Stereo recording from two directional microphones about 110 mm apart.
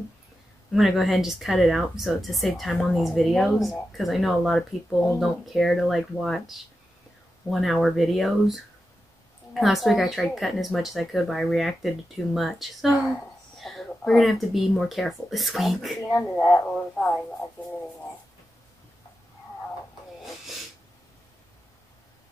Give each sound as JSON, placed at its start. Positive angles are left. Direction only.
{"t": 0.7, "sound": "a woman's voice", "side_deg": 0}
{"t": 16.0, "sound": "speech", "side_deg": 25}
{"t": 16.4, "sound": "a woman's voice", "side_deg": 5}